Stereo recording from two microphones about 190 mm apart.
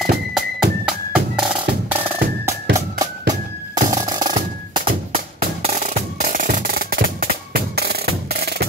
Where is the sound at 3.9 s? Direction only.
20° right (ahead or behind).